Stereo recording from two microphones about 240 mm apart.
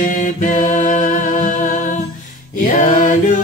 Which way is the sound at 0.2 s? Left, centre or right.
Left.